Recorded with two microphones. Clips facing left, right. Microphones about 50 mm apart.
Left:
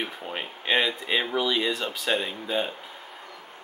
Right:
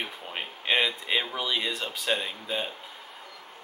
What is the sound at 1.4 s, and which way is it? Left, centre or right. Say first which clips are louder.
Speech: left 4 dB; centre.